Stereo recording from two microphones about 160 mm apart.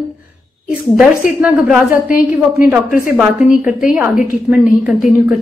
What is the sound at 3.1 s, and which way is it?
Speech, 5° right (ahead or behind).